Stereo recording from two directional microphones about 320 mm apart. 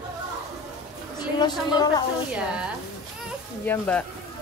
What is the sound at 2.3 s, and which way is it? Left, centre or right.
Speech, centre.